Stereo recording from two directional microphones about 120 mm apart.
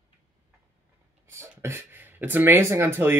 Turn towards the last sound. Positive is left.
turn(degrees=-20)  # may be behind; listen again after turning